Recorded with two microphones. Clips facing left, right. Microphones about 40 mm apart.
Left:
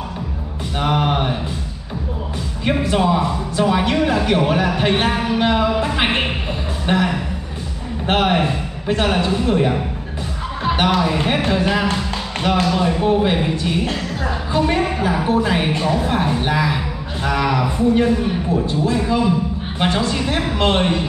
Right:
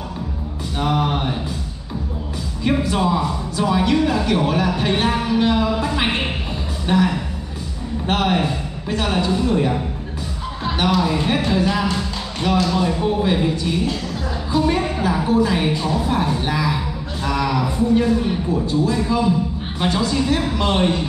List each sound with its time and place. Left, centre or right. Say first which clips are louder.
0.7 s a sound: left 2 dB; left
2.6 s a man's voice: left 1 dB; left
10.8 s a man's voice: even; left
15.2 s a woman's voice: right 1 dB; left